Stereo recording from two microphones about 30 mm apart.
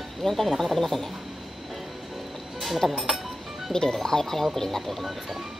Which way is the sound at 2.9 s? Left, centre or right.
Centre.